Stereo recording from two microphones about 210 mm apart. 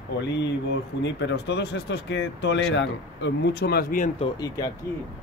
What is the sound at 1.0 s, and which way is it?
Speech, 55° left (ahead or behind).